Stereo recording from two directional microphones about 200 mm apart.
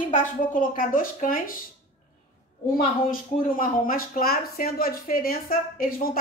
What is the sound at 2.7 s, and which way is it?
A woman's voice, 45° left (ahead or behind).